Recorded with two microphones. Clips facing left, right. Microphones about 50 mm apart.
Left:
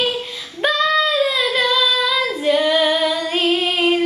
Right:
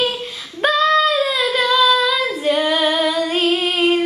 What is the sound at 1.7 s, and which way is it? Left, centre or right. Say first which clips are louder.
Female singing: right 3 dB; centre.